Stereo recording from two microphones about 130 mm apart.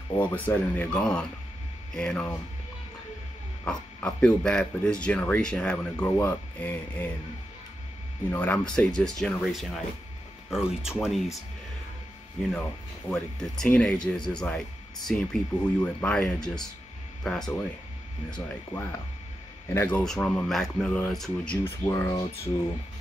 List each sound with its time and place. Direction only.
0.2 s speech: 15° left (ahead or behind)
3.6 s speech: 5° left (ahead or behind)
8.3 s speech: 10° left (ahead or behind)
13.1 s speech: 5° left (ahead or behind)
18.7 s speech: 20° left (ahead or behind)
20.0 s speech: 5° left (ahead or behind)
21.6 s speech: 20° left (ahead or behind)